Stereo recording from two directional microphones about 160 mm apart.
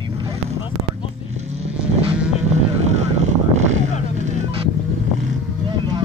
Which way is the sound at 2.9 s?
45° right (ahead or behind).